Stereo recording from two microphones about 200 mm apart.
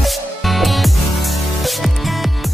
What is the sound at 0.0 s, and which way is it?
Music, centre (ahead or behind).